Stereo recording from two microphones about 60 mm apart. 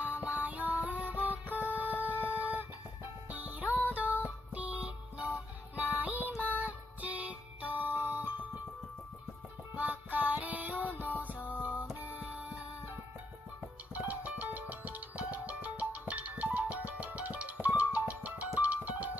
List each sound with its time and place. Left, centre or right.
0.0 s music: right
9.8 s music: right
13.9 s music: right